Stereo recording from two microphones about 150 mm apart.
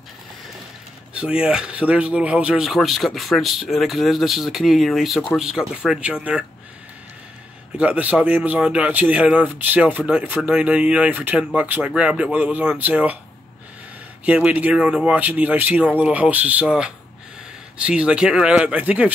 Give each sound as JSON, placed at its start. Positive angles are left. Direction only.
{"t": 1.1, "sound": "a man's voice", "side_deg": -5}
{"t": 7.7, "sound": "a man's voice", "side_deg": -10}
{"t": 14.2, "sound": "a man's voice", "side_deg": -10}